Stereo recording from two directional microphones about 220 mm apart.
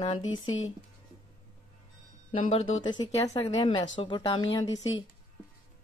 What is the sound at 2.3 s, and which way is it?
A woman's voice, 25° left (ahead or behind).